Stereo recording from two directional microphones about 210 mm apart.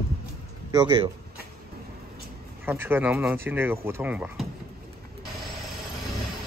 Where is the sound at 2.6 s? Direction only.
10° right (ahead or behind).